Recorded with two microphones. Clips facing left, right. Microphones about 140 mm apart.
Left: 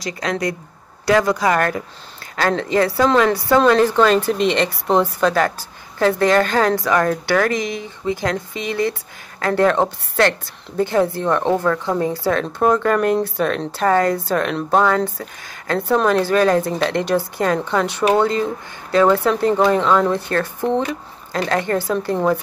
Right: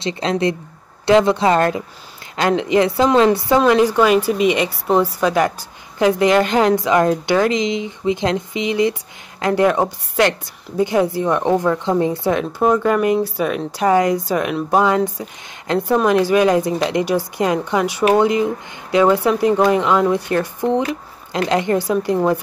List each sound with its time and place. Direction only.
0.0 s a woman's voice: 25° right (ahead or behind)